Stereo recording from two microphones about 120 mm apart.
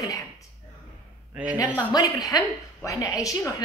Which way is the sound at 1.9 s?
30° left (ahead or behind).